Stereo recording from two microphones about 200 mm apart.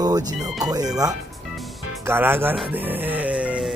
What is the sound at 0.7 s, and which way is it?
Speech, 20° right (ahead or behind).